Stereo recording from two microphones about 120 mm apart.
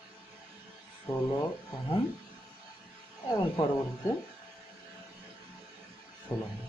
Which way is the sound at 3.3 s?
35° left (ahead or behind).